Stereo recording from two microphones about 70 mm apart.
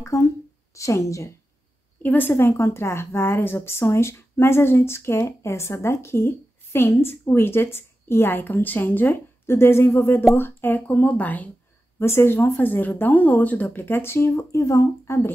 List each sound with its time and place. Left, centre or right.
0.0 s speech: left
2.0 s a woman's voice: left
12.0 s a woman's voice: left